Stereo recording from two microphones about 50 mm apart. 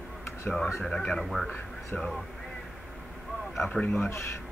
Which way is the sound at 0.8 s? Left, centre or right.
Centre.